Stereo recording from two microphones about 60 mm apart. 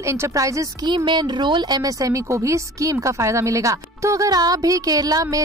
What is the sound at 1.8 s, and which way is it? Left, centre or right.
A woman's voice, right.